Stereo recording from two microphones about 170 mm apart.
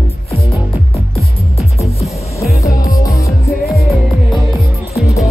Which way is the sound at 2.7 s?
55° left (ahead or behind).